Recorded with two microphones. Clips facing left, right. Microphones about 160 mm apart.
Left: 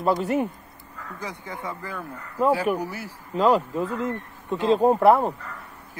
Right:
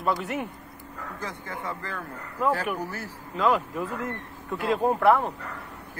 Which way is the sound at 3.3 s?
35° left (ahead or behind).